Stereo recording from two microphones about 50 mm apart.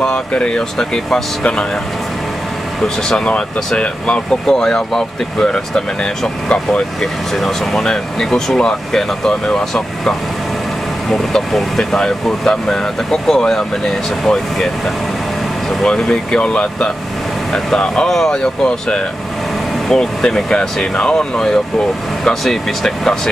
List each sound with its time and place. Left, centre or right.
0.0 s speech: centre
3.1 s speech: left
7.3 s speech: centre
15.8 s speech: centre